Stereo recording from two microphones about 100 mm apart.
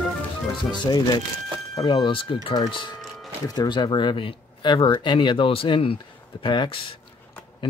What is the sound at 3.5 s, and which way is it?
Speech, 45° left (ahead or behind).